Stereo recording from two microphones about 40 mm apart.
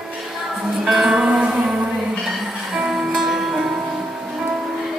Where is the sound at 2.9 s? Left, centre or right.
Centre.